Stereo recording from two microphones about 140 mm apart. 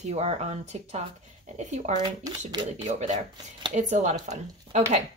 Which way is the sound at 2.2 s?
25° right (ahead or behind).